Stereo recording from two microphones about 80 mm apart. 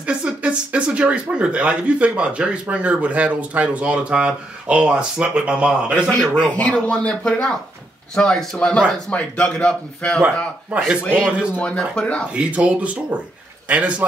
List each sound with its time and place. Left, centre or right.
0.0 s speech: centre
6.6 s a man's voice: centre
10.7 s speech: centre
11.5 s a man's voice: centre
12.4 s speech: centre